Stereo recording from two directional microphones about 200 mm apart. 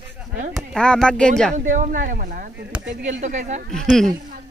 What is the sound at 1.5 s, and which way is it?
Speech, 40° right (ahead or behind).